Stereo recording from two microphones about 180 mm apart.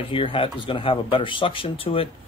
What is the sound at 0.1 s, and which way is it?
Speech, 30° left (ahead or behind).